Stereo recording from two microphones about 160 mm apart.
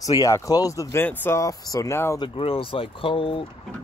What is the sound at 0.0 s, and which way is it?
Speech, 20° left (ahead or behind).